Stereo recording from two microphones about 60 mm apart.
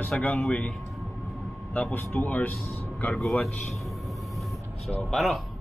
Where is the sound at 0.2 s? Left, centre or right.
Left.